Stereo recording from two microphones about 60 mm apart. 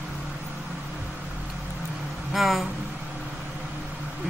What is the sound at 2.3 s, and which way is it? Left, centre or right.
Speech, centre.